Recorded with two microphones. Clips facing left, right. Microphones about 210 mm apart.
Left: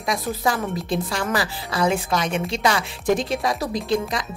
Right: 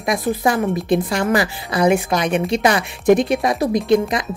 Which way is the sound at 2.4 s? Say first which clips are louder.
Right 5 dB; 60° right (ahead or behind).